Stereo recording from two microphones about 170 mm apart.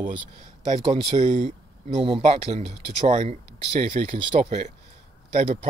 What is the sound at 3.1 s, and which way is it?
Speech, 50° right (ahead or behind).